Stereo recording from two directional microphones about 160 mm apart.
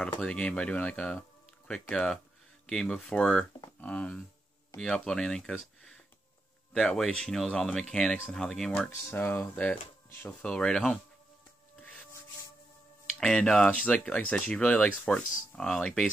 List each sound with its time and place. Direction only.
0.2 s speech: 5° left (ahead or behind)
11.8 s rub: 10° left (ahead or behind)
13.2 s speech: 5° left (ahead or behind)